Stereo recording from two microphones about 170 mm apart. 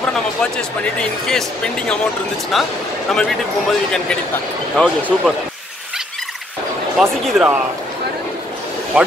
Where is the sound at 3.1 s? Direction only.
5° left (ahead or behind).